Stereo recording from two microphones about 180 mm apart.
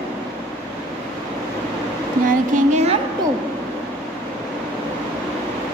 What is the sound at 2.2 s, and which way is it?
Speech, 40° right (ahead or behind).